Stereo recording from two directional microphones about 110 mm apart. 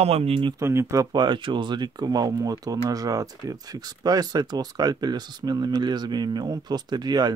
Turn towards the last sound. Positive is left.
turn(degrees=-40)  # may be behind; listen again after turning